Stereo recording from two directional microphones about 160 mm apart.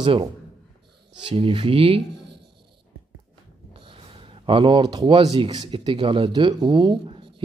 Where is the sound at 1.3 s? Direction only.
35° right (ahead or behind).